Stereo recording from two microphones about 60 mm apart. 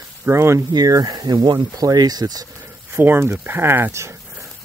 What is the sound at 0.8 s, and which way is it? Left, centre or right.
Speech, right.